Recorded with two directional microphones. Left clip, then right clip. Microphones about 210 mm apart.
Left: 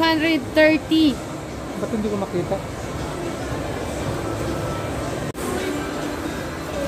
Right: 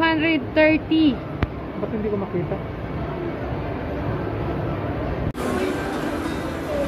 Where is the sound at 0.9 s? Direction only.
50° left (ahead or behind).